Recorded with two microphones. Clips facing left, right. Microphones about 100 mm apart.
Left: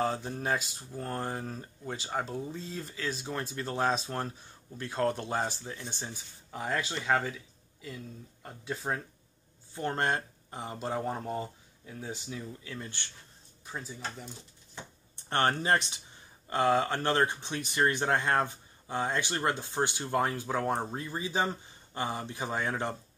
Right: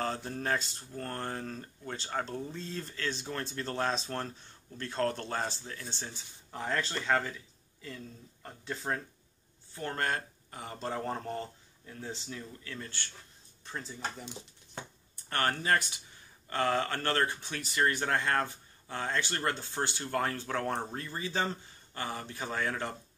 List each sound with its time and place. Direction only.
0.0 s speech: 10° left (ahead or behind)
9.8 s speech: 25° left (ahead or behind)
13.7 s speech: 5° left (ahead or behind)
15.2 s speech: 25° left (ahead or behind)